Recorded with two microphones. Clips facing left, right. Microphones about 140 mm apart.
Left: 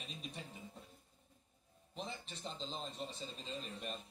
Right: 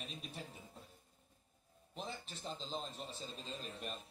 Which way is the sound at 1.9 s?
Centre (ahead or behind).